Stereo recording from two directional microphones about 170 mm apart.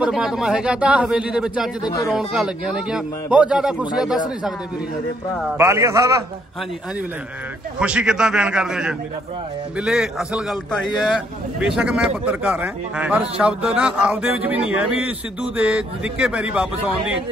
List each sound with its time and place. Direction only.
0.0 s a man's voice: 5° right (ahead or behind)
5.6 s a man's voice: 20° right (ahead or behind)
7.8 s a man's voice: 5° right (ahead or behind)